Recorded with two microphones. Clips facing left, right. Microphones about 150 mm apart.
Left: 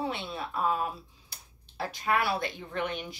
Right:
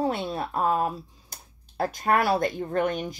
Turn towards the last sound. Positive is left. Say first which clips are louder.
# right 8 dB
turn(degrees=-45)  # may be behind; listen again after turning